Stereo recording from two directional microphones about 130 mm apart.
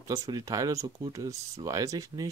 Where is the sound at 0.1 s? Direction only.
25° right (ahead or behind).